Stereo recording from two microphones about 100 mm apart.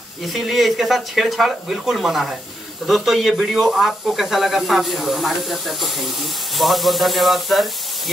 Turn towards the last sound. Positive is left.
turn(degrees=0)  # may be behind; listen again after turning